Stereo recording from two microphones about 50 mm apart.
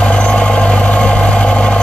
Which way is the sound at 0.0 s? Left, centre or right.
Left.